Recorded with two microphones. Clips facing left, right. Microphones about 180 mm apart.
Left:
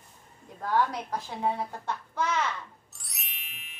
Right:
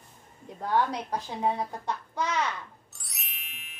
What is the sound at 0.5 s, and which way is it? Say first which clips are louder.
Speech: even; 20° right (ahead or behind).